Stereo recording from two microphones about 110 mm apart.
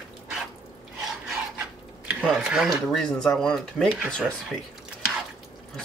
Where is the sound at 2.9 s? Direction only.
5° left (ahead or behind).